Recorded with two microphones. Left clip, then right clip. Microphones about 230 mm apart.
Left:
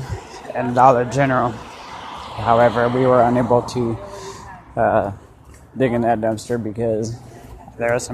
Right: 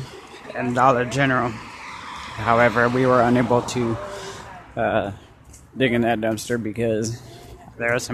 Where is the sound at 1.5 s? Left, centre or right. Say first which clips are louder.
Left 2 dB; right.